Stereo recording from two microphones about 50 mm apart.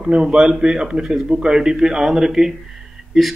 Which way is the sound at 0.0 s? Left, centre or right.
Centre.